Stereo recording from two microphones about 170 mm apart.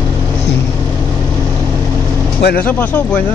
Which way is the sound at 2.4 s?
75° left (ahead or behind).